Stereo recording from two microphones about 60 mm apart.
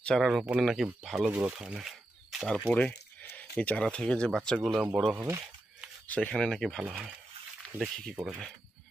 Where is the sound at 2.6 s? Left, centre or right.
Left.